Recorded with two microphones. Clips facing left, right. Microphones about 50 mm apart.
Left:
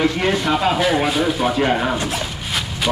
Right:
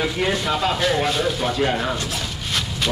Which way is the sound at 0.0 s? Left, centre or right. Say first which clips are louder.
Left 4 dB; centre.